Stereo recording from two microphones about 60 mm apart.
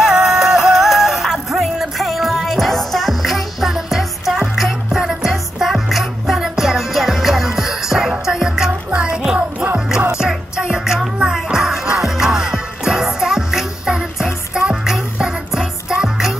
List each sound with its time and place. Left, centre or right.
0.0 s music: centre
8.9 s music: right